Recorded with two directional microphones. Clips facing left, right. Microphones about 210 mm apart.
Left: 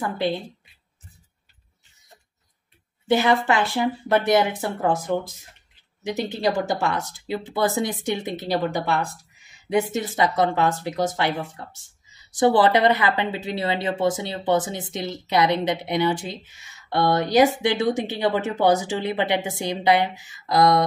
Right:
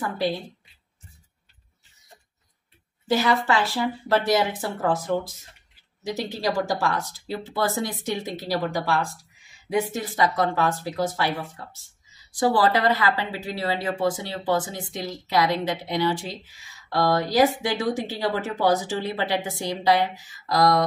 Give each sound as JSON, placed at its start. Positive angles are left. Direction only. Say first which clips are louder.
{"t": 3.1, "sound": "speech", "louder": "left 2 dB", "side_deg": 20}
{"t": 6.3, "sound": "speech", "louder": "left 2 dB", "side_deg": 20}
{"t": 12.4, "sound": "speech", "louder": "left 3 dB", "side_deg": 20}